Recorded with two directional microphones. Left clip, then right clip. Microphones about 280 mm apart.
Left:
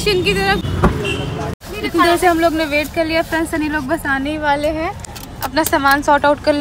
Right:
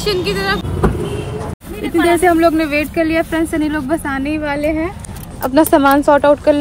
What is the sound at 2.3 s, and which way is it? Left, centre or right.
Speech, left.